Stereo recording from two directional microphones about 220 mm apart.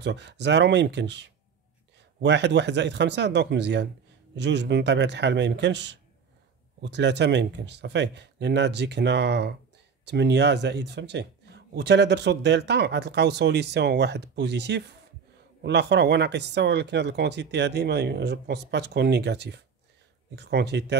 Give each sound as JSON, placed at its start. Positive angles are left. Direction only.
{"t": 0.0, "sound": "speech", "side_deg": -50}